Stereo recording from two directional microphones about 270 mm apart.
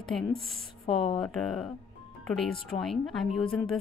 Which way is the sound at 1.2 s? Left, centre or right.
Centre.